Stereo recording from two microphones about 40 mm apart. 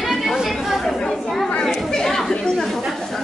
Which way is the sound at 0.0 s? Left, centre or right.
Centre.